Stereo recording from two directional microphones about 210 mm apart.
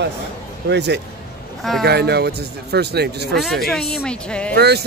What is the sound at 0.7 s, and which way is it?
Speech, 55° right (ahead or behind).